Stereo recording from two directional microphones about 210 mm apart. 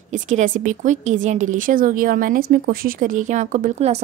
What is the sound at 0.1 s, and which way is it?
Speech, 35° right (ahead or behind).